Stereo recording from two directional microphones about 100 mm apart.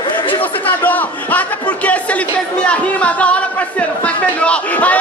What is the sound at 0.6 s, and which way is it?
Speech, 15° left (ahead or behind).